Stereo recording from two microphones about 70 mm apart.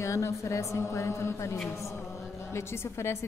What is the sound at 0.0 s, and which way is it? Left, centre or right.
A woman's voice, left.